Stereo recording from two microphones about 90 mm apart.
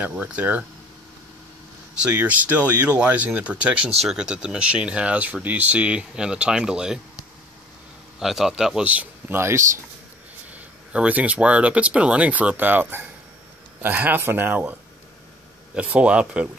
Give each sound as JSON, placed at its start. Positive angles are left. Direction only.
{"t": 0.0, "sound": "speech", "side_deg": -15}
{"t": 2.0, "sound": "speech", "side_deg": -15}
{"t": 8.2, "sound": "a man's voice", "side_deg": -5}
{"t": 8.8, "sound": "a man's voice", "side_deg": -15}
{"t": 9.4, "sound": "speech", "side_deg": -30}
{"t": 10.5, "sound": "speech", "side_deg": -15}